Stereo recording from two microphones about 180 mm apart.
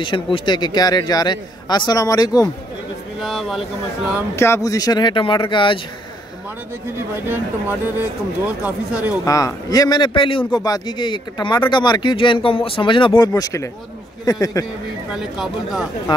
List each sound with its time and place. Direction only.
0.0 s speech: 25° left (ahead or behind)
3.2 s speech: centre (ahead or behind)
4.4 s speech: 15° left (ahead or behind)
7.2 s speech: 10° right (ahead or behind)
9.2 s speech: 20° left (ahead or behind)
13.3 s speech: 15° left (ahead or behind)
15.1 s speech: centre (ahead or behind)
16.1 s speech: 25° left (ahead or behind)